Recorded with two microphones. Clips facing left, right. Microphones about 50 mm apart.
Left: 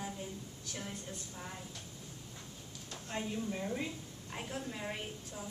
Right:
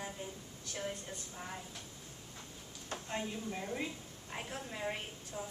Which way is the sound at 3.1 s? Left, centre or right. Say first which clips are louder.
Left 2 dB; centre.